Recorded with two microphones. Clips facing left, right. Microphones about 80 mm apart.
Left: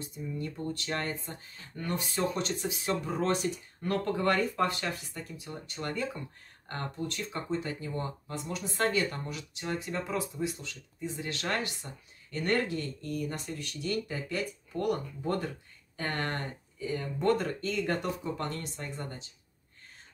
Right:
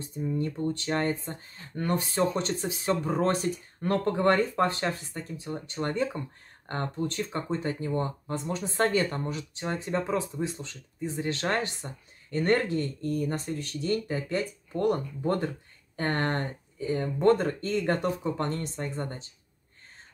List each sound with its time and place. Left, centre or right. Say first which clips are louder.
0.1 s speech: right 10 dB; right
1.8 s speech: right 5 dB; right